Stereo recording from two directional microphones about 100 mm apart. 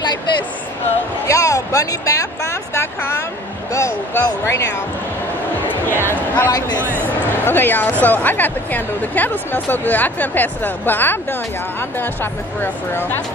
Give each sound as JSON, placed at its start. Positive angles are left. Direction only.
{"t": 1.2, "sound": "a sound", "side_deg": 35}
{"t": 5.9, "sound": "speech", "side_deg": 20}
{"t": 6.8, "sound": "speech", "side_deg": -20}
{"t": 7.4, "sound": "a woman's voice", "side_deg": 20}